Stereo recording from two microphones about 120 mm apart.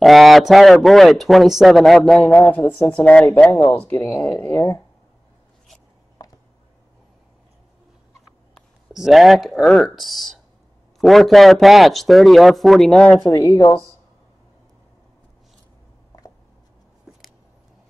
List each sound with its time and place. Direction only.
0.0 s a man's voice: centre (ahead or behind); by 4.0 s 20° left (ahead or behind)
4.0 s speech: 10° left (ahead or behind)
4.6 s speech: 25° left (ahead or behind)
8.5 s a man's voice: centre (ahead or behind)
13.2 s speech: 30° left (ahead or behind)